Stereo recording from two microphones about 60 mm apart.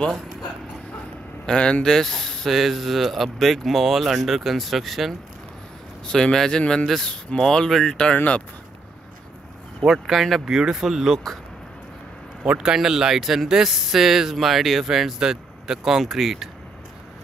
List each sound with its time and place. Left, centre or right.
1.4 s speech: centre
6.0 s speech: centre
9.8 s speech: centre
12.4 s speech: centre